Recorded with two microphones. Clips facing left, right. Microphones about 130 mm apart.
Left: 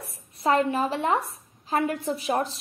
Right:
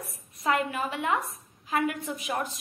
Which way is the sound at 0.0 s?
30° left (ahead or behind).